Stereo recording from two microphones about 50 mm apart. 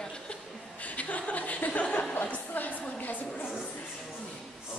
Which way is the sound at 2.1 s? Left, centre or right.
Left.